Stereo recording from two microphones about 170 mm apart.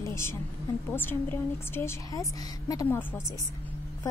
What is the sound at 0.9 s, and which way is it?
A woman's voice, 10° left (ahead or behind).